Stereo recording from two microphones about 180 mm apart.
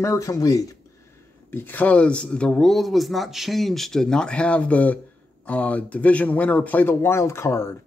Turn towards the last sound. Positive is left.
turn(degrees=15)  # may be behind; listen again after turning